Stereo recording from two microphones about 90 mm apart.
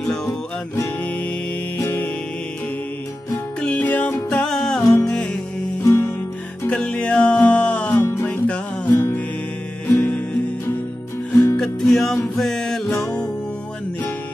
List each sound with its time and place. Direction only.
0.0 s music: 5° left (ahead or behind)
1.8 s music: 20° left (ahead or behind)
3.6 s music: 15° left (ahead or behind)
8.0 s music: 25° left (ahead or behind)
11.5 s music: 5° left (ahead or behind)